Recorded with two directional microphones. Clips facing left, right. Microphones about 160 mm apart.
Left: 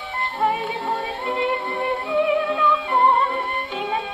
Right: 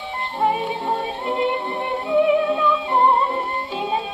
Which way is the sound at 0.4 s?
20° right (ahead or behind).